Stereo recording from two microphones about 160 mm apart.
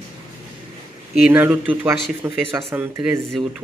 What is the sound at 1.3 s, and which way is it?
Speech, 15° right (ahead or behind).